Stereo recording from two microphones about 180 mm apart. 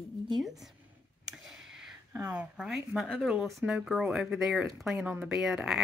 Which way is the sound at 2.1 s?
10° right (ahead or behind).